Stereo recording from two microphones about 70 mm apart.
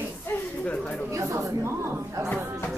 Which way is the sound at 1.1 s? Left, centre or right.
Right.